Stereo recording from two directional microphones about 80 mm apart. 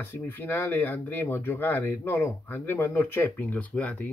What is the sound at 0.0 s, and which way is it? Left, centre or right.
Speech, left.